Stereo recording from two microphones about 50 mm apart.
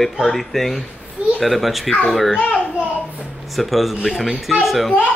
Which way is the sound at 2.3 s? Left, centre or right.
Left.